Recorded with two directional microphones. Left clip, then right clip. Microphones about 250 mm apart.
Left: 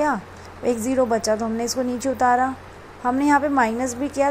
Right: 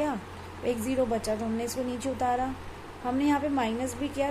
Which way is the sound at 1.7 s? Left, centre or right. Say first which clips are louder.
Left 8 dB; left.